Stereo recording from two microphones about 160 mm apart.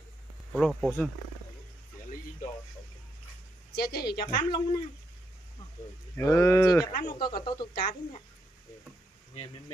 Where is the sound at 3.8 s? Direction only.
80° left.